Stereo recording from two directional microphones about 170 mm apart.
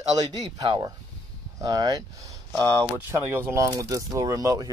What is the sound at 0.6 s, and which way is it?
Speech, 25° right (ahead or behind).